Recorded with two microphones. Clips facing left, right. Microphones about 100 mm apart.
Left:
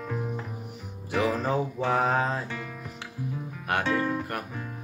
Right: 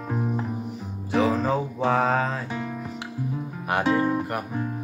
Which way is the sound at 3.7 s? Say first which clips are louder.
Right 4 dB; 15° right (ahead or behind).